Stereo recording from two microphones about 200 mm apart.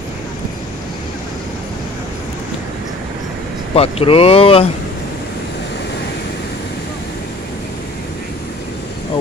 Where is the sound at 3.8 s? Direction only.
30° left (ahead or behind).